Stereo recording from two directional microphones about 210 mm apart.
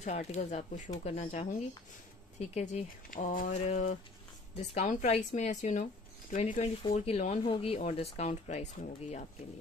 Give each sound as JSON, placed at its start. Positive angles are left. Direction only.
{"t": 0.0, "sound": "speech", "side_deg": 30}